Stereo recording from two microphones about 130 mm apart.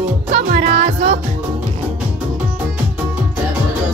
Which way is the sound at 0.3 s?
65° right (ahead or behind).